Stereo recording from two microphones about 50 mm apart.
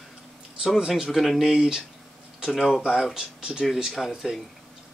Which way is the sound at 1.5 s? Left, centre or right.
Centre.